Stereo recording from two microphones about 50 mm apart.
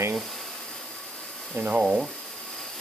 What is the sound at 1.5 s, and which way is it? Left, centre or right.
Speech, right.